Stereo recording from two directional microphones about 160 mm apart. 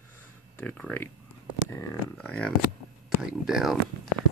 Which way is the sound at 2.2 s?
5° left (ahead or behind).